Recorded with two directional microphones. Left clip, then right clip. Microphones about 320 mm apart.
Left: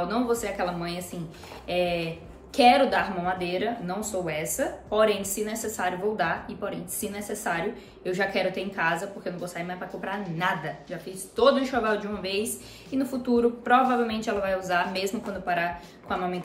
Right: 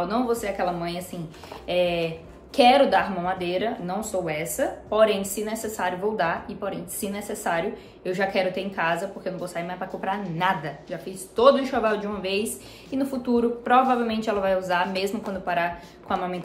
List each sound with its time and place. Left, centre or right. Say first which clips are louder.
0.1 s a woman's voice: right 2 dB; centre